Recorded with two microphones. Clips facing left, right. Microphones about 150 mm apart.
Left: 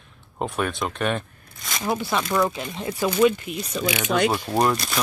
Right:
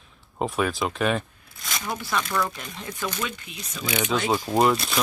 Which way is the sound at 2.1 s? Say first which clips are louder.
Left 2 dB; 25° left (ahead or behind).